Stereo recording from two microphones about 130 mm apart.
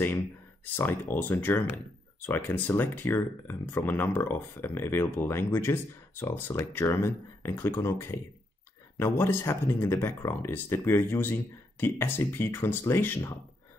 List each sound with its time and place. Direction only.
0.7 s speech: 15° left (ahead or behind)